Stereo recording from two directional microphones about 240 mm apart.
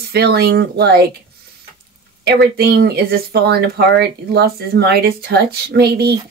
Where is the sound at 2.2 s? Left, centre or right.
Right.